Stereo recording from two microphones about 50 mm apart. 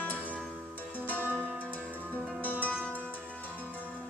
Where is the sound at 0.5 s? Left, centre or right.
Right.